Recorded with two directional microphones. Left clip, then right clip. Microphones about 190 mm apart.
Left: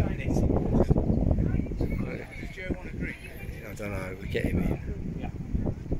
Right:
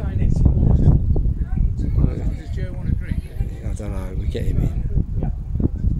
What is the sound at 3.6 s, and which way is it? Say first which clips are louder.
Speech: right 1 dB; 10° right (ahead or behind).